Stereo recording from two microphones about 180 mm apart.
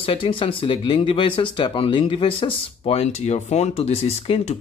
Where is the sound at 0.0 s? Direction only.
30° left (ahead or behind).